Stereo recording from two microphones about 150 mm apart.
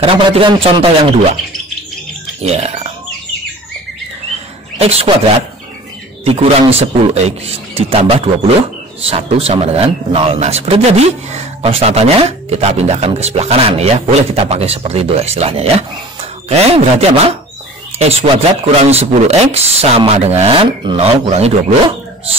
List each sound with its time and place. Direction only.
0.0 s a man's voice: 35° right (ahead or behind)
2.4 s speech: 45° right (ahead or behind)
4.7 s a man's voice: 40° right (ahead or behind)
17.9 s a man's voice: 40° right (ahead or behind)